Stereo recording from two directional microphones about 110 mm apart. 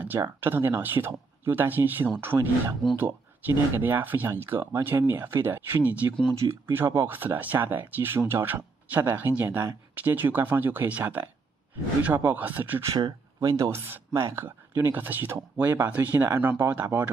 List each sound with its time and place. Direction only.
0.4 s speech: 20° right (ahead or behind)
12.9 s speech: 40° right (ahead or behind)
13.7 s speech: 20° right (ahead or behind)